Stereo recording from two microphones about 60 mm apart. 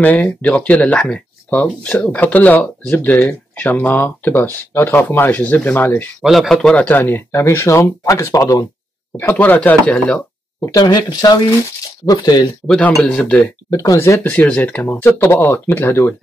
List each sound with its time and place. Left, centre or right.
0.0 s speech: left
0.9 s speech: centre
6.2 s speech: centre
6.5 s speech: centre
6.9 s speech: left
7.3 s speech: left
9.3 s speech: left
10.6 s speech: left
13.0 s speech: centre
13.7 s speech: left
14.2 s speech: left